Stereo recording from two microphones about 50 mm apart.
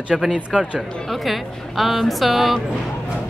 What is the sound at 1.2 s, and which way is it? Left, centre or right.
A woman's voice, centre.